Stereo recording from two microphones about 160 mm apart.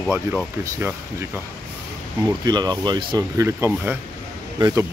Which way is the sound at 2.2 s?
25° right (ahead or behind).